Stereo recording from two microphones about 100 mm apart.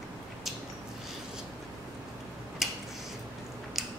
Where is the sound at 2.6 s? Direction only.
5° right (ahead or behind).